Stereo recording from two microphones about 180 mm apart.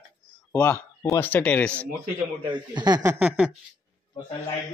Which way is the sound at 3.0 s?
5° right (ahead or behind).